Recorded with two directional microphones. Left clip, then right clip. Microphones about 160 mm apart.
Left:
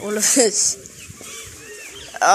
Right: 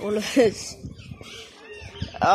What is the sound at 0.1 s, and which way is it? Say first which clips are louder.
Speech: left 3 dB; 5° right (ahead or behind).